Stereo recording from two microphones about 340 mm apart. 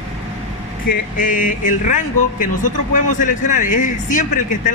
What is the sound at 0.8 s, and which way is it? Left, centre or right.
Speech, left.